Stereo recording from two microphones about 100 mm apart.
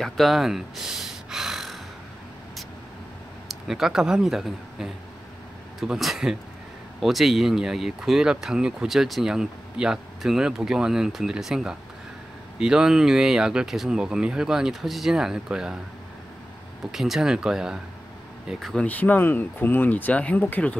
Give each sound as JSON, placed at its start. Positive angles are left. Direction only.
{"t": 0.0, "sound": "gasp", "side_deg": 0}
{"t": 3.4, "sound": "speech", "side_deg": -5}
{"t": 16.9, "sound": "speech", "side_deg": -5}
{"t": 18.8, "sound": "speech", "side_deg": 15}